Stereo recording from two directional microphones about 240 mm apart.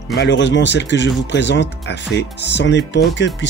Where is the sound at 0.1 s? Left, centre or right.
Left.